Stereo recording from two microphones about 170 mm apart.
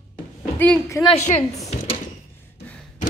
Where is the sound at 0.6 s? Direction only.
15° left (ahead or behind).